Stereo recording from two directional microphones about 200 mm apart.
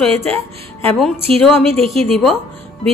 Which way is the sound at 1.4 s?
Centre (ahead or behind).